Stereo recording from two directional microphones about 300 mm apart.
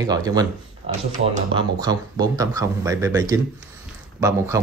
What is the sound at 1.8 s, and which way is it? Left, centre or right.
Speech, centre.